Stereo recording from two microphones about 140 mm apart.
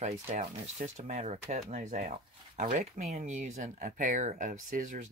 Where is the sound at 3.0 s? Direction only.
55° right (ahead or behind).